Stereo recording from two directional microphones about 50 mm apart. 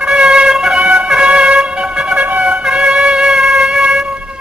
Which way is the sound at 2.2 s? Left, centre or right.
Right.